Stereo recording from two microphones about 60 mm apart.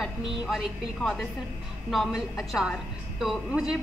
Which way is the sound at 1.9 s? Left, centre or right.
Centre.